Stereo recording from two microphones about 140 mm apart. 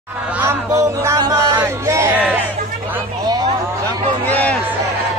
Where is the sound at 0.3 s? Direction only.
15° right (ahead or behind).